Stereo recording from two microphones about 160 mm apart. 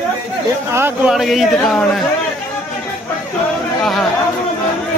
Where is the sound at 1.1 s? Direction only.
Centre (ahead or behind).